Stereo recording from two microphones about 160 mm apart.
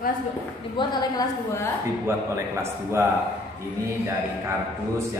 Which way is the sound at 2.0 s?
15° right (ahead or behind).